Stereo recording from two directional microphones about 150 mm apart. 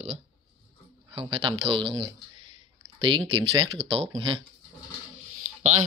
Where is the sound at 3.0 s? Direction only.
35° right (ahead or behind).